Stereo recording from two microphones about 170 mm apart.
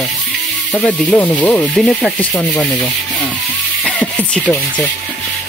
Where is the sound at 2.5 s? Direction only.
20° left (ahead or behind).